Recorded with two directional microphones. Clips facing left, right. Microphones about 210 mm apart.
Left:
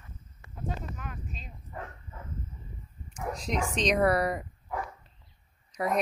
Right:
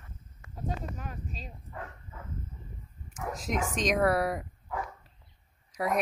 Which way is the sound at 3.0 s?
5° right (ahead or behind).